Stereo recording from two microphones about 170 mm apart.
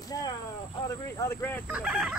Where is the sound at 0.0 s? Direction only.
20° left (ahead or behind).